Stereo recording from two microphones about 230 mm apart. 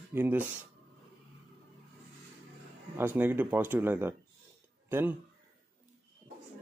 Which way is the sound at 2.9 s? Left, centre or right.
Centre.